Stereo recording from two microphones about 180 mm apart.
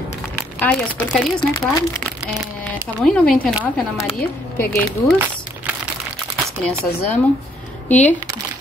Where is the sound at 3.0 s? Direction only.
5° left (ahead or behind).